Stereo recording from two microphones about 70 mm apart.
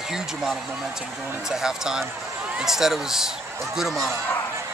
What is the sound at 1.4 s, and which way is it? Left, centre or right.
Speech, centre.